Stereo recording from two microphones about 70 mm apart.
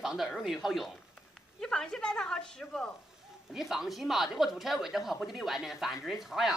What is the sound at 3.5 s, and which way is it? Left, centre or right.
A woman's voice, centre.